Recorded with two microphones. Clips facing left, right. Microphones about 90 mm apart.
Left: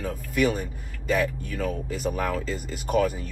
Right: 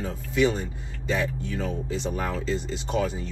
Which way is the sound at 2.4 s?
25° right (ahead or behind).